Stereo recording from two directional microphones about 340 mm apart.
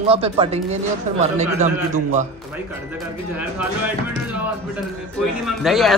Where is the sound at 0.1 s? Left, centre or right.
Centre.